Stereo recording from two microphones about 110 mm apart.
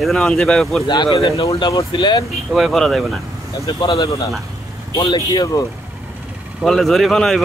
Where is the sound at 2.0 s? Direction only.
45° left (ahead or behind).